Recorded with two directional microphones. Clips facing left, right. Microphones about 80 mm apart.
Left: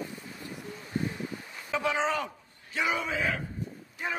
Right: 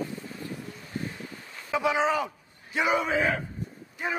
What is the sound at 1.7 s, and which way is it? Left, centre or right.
Speech, centre.